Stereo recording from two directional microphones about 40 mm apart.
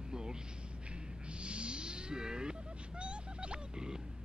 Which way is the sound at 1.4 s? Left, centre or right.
Right.